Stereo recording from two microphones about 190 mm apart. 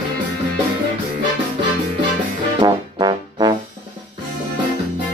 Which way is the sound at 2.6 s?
20° right (ahead or behind).